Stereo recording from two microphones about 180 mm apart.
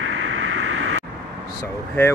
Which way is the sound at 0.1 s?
90° right.